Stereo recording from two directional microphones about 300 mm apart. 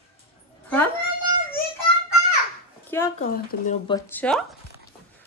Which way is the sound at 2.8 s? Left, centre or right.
Centre.